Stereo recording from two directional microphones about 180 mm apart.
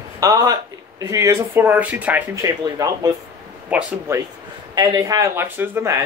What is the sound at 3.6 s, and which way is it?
Speech, 10° right (ahead or behind).